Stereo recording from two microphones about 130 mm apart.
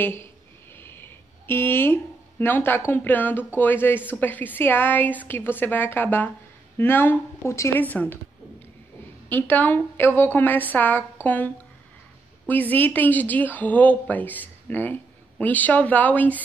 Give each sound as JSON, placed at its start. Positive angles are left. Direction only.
{"t": 0.0, "sound": "speech", "side_deg": 15}
{"t": 0.7, "sound": "a sound", "side_deg": 15}
{"t": 2.9, "sound": "speech", "side_deg": 15}
{"t": 9.3, "sound": "speech", "side_deg": 15}